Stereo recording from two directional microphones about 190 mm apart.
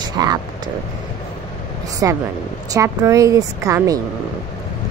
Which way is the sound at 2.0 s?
15° right (ahead or behind).